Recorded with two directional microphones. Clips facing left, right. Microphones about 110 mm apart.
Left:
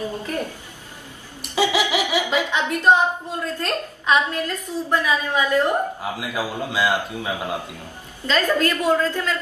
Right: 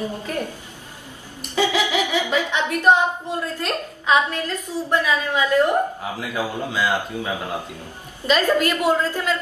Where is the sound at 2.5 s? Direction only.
15° right (ahead or behind).